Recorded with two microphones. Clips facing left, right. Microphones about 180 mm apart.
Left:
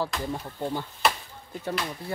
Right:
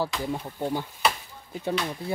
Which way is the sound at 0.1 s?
10° right (ahead or behind).